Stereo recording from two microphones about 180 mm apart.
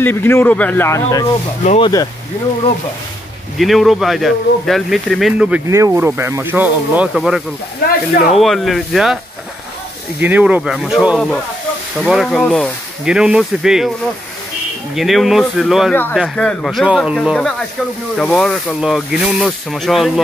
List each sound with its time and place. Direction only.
0.0 s speech: 10° left (ahead or behind)
3.5 s speech: centre (ahead or behind)
5.7 s speech: 15° right (ahead or behind)
10.2 s speech: 10° right (ahead or behind)
15.0 s speech: centre (ahead or behind)
15.9 s speech: 10° left (ahead or behind)